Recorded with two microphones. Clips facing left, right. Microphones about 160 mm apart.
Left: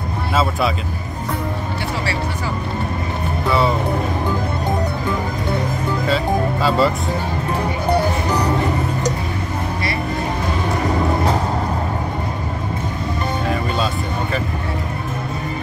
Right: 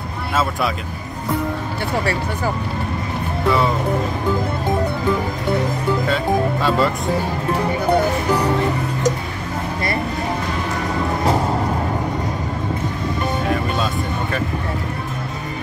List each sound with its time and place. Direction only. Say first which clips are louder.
6.0 s speech: left 3 dB; centre (ahead or behind)